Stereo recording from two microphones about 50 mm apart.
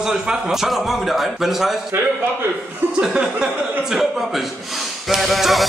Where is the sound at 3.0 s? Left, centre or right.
Centre.